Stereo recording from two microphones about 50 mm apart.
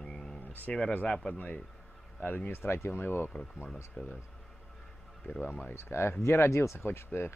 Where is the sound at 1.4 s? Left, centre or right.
Left.